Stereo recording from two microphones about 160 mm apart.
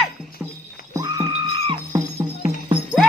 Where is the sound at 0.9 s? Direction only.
25° right (ahead or behind).